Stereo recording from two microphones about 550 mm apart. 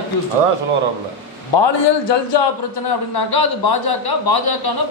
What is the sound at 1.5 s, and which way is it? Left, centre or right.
A man's voice, left.